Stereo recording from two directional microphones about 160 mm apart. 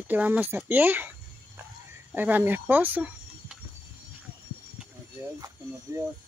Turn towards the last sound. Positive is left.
turn(degrees=-20)  # may be behind; listen again after turning